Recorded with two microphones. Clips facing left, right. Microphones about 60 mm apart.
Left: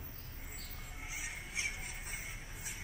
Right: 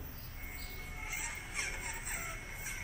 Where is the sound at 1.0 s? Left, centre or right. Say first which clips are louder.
Right 2 dB; right.